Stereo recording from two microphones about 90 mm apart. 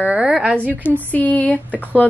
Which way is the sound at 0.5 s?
20° left (ahead or behind).